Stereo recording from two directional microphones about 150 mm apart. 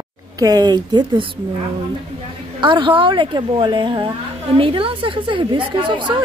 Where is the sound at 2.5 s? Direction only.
30° right (ahead or behind).